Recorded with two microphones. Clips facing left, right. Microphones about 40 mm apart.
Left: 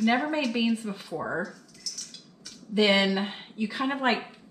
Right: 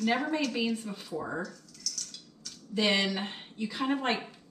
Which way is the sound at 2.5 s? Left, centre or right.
Centre.